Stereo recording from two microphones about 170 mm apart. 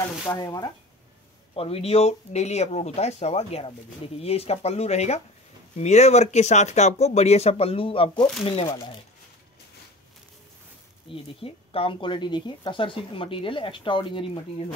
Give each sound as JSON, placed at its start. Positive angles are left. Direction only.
{"t": 0.3, "sound": "speech", "side_deg": 25}
{"t": 1.5, "sound": "speech", "side_deg": 35}
{"t": 11.1, "sound": "speech", "side_deg": 30}